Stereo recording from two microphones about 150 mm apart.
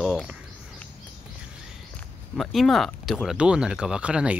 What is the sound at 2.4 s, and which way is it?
Speech, centre (ahead or behind).